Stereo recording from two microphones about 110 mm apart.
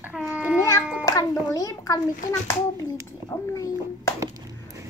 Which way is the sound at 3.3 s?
35° left (ahead or behind).